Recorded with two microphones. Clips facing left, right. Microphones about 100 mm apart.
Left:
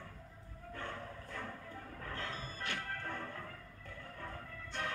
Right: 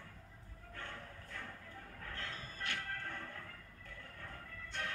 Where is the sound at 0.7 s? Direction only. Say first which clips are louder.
Left 5 dB; 30° left (ahead or behind).